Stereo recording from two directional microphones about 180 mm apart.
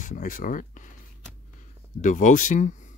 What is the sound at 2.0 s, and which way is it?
Speech, 45° left (ahead or behind).